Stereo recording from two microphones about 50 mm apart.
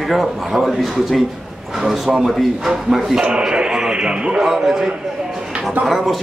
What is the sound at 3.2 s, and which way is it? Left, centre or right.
A man's voice, centre.